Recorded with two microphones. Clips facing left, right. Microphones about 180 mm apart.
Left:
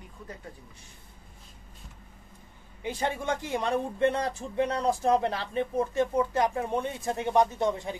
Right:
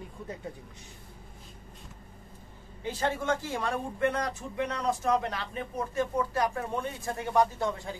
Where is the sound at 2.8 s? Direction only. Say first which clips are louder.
Even; 15° left (ahead or behind).